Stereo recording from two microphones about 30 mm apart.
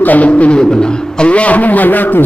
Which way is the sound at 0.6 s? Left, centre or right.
Left.